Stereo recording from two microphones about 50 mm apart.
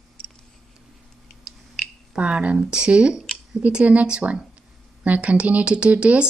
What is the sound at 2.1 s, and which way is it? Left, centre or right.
Speech, right.